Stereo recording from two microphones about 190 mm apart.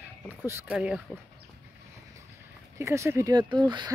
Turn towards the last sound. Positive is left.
turn(degrees=-25)  # may be behind; listen again after turning